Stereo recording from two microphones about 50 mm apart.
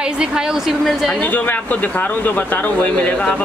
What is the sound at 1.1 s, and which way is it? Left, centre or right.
Speech, left.